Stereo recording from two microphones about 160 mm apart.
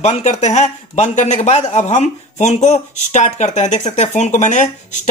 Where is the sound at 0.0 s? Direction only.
45° left (ahead or behind).